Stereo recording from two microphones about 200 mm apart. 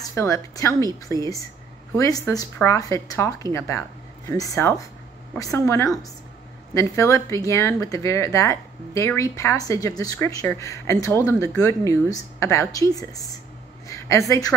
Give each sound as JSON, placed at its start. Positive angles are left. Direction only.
{"t": 0.0, "sound": "a woman's voice", "side_deg": 15}